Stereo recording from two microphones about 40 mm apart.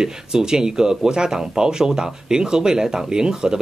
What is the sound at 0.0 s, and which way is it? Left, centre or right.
Speech, centre.